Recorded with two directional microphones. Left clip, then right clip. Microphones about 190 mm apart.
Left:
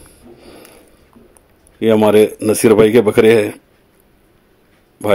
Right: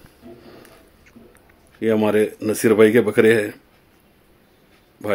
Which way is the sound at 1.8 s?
30° left (ahead or behind).